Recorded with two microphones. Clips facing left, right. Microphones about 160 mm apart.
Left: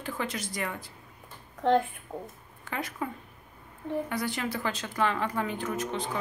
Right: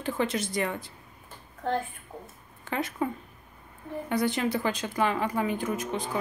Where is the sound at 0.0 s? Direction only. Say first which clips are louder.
Right 5 dB; 25° right (ahead or behind).